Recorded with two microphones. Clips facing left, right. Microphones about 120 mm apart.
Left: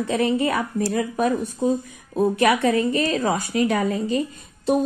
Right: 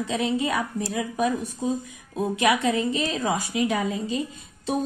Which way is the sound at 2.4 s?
55° left (ahead or behind).